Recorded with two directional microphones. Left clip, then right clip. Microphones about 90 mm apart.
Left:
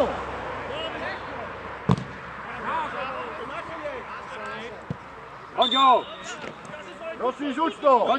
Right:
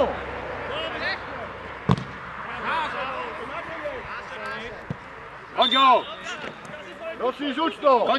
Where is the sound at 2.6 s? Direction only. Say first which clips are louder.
Right 2 dB; 30° right (ahead or behind).